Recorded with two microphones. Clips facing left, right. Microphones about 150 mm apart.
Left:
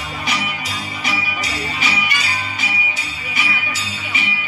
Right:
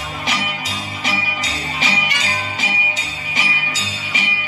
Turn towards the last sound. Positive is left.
turn(degrees=-90)